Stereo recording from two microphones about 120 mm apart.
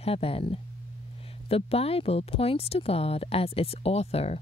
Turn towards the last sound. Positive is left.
turn(degrees=60)  # may be behind; listen again after turning